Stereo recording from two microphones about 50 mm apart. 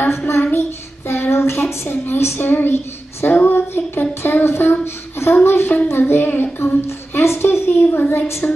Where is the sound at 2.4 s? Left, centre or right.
Left.